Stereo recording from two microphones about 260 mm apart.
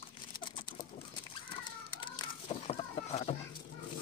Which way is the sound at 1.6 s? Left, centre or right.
Centre.